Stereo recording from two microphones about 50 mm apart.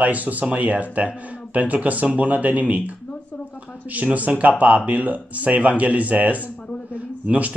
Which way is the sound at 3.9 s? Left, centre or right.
Right.